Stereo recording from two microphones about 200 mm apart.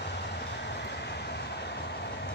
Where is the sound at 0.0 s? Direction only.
60° left (ahead or behind).